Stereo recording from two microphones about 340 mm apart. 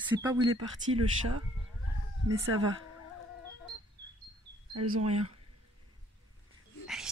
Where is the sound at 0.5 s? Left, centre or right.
Right.